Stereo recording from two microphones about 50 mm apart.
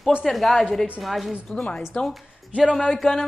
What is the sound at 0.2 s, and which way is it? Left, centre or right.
Speech, centre.